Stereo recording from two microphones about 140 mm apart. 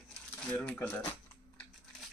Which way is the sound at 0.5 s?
10° left (ahead or behind).